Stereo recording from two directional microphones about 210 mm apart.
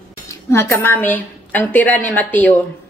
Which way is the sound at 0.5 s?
10° left (ahead or behind).